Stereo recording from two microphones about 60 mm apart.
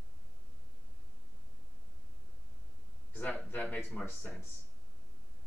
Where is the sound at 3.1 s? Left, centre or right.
Left.